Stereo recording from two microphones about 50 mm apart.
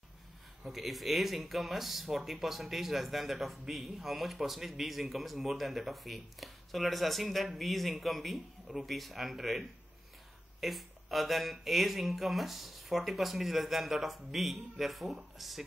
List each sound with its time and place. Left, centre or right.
0.7 s speech: centre
10.6 s speech: centre